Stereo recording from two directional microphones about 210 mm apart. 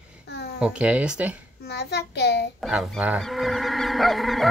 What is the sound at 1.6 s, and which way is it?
Speech, 50° left (ahead or behind).